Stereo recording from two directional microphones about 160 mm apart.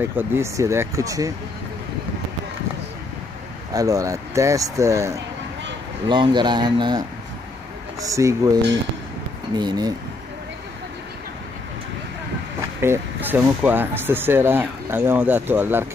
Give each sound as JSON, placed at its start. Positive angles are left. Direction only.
{"t": 0.0, "sound": "speech", "side_deg": -15}
{"t": 3.7, "sound": "speech", "side_deg": -20}
{"t": 6.0, "sound": "speech", "side_deg": -30}
{"t": 9.6, "sound": "speech", "side_deg": -25}
{"t": 12.8, "sound": "speech", "side_deg": -15}